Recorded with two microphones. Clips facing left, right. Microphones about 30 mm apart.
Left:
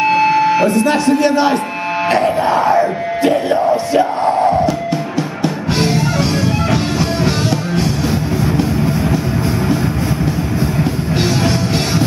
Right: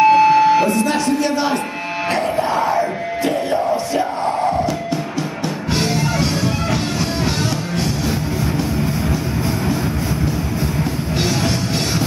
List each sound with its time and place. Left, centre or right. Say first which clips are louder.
0.0 s buzzer: right 1 dB; centre
0.7 s speech: left 4 dB; left
2.0 s music: left 5 dB; centre
3.9 s a sound: left 5 dB; centre
5.8 s music: left 3 dB; centre